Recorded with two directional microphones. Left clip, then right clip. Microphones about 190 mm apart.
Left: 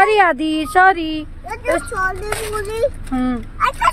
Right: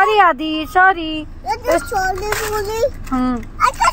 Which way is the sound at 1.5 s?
15° left (ahead or behind).